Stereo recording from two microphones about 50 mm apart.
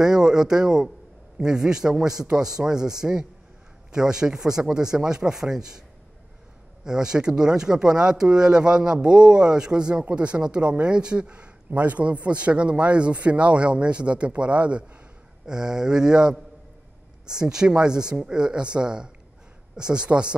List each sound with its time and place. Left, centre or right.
0.0 s a man's voice: centre
6.8 s speech: centre
17.4 s speech: centre